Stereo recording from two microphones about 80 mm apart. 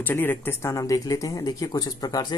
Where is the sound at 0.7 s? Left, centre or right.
Left.